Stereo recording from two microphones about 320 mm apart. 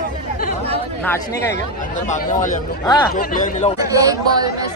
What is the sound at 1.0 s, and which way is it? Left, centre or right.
Speech, centre.